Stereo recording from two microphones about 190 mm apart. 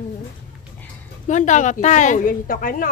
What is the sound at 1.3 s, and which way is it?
A woman's voice, 40° left (ahead or behind).